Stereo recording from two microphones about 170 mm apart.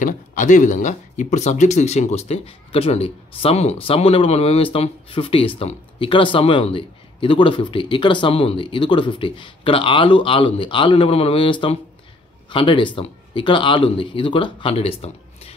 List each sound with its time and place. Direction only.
0.0 s speech: 50° left (ahead or behind)